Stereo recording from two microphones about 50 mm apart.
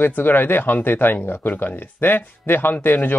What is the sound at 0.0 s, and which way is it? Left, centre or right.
Speech, left.